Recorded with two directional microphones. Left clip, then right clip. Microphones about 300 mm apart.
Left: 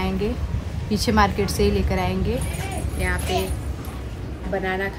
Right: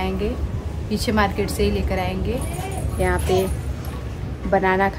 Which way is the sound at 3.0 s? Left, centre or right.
Centre.